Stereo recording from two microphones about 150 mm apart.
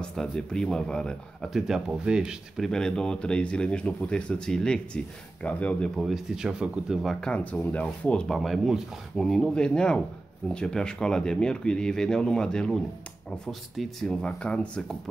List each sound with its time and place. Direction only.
0.0 s speech: 5° left (ahead or behind)